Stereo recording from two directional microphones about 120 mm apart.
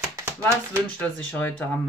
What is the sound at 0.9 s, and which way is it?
Speech, 15° left (ahead or behind).